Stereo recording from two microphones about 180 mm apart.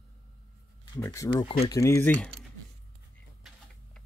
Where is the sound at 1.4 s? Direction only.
35° left (ahead or behind).